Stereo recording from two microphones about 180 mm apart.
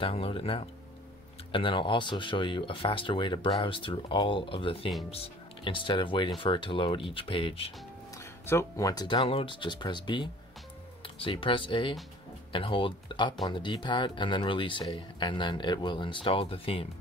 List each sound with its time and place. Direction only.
0.0 s speech: 30° left (ahead or behind)
8.2 s speech: 15° left (ahead or behind); by 16.8 s 30° left (ahead or behind)